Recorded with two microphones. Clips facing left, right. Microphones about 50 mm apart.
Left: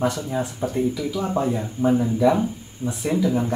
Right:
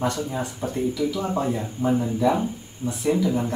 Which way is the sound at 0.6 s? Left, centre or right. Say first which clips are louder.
Right 1 dB; centre.